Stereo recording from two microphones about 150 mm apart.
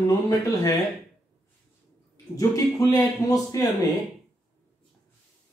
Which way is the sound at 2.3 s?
25° left (ahead or behind).